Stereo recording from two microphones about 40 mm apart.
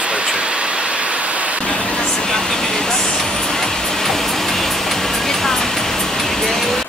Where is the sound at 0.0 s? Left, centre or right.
Right.